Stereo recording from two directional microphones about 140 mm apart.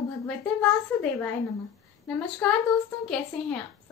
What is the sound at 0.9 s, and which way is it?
Speech, 10° left (ahead or behind).